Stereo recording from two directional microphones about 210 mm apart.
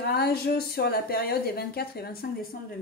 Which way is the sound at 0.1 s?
50° left (ahead or behind).